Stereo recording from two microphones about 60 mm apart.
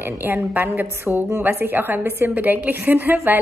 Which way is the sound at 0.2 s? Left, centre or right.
Right.